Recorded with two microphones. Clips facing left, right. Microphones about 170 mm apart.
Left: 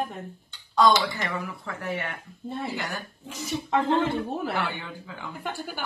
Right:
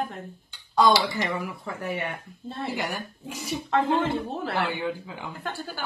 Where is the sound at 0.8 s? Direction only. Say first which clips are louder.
Even; 15° right (ahead or behind).